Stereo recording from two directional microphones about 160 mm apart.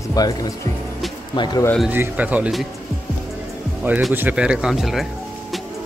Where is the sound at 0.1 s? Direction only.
20° left (ahead or behind).